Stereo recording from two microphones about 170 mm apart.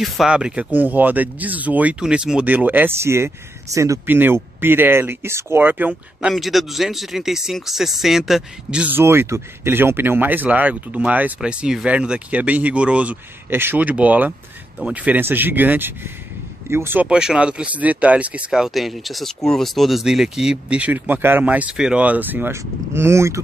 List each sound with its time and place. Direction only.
0.0 s speech: 5° right (ahead or behind)